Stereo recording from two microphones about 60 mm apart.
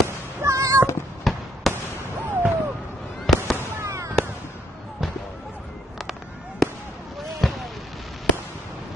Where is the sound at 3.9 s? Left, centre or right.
Right.